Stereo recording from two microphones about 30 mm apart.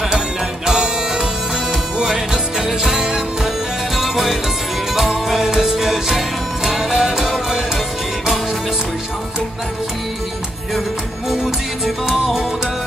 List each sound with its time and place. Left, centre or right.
0.7 s music: right
3.9 s music: centre
7.2 s music: centre
7.4 s music: centre
11.8 s music: centre